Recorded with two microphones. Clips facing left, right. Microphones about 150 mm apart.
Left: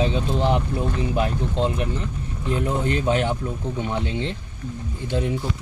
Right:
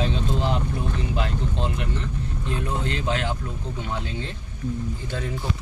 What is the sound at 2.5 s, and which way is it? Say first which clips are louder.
Speech: left 6 dB; 15° left (ahead or behind).